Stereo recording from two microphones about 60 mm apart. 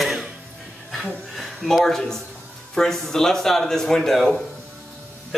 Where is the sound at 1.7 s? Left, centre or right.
Centre.